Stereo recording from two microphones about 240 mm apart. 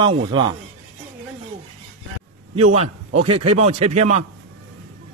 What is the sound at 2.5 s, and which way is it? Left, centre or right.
Speech, right.